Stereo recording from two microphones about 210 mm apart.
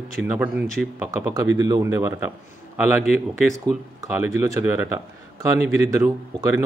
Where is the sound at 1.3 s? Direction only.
15° right (ahead or behind).